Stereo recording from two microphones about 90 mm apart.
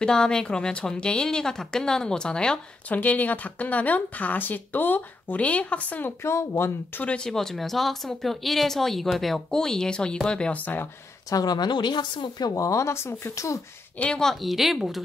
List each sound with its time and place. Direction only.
0.0 s speech: 10° left (ahead or behind)
6.2 s speech: 30° left (ahead or behind)
7.2 s speech: 5° left (ahead or behind); by 10.9 s 20° left (ahead or behind)
11.2 s speech: 45° left (ahead or behind)
13.9 s speech: 10° left (ahead or behind)
14.4 s speech: centre (ahead or behind)